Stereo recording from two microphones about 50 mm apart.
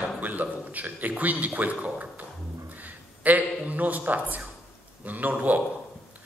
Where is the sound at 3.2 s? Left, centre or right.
Right.